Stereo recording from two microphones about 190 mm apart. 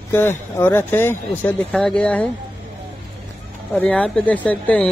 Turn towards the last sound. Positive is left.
turn(degrees=10)  # may be behind; listen again after turning